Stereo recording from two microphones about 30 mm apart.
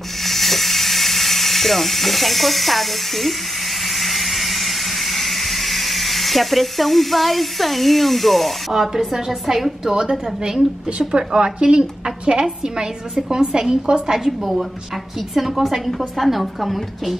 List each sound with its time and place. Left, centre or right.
0.2 s a sound: centre
9.1 s a woman's voice: centre
11.1 s a woman's voice: right
14.1 s a woman's voice: centre
16.2 s a woman's voice: centre